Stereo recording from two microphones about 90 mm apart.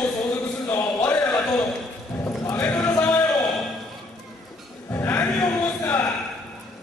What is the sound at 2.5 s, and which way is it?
Clip-clop, 20° left (ahead or behind).